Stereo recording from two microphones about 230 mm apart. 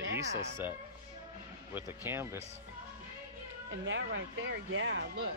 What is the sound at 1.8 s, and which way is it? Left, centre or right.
Speech, centre.